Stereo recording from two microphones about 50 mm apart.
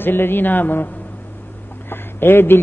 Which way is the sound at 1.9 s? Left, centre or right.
Left.